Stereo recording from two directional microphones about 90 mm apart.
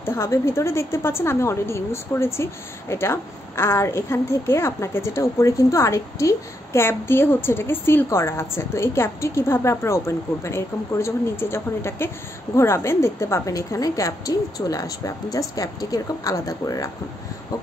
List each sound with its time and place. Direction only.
0.0 s a woman's voice: 30° left (ahead or behind)